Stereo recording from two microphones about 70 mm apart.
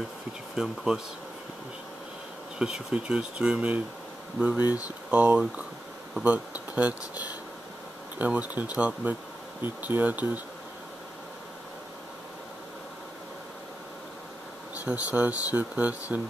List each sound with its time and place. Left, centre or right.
0.6 s speech: centre
2.6 s speech: centre
4.6 s speech: left
5.1 s speech: right
14.9 s speech: right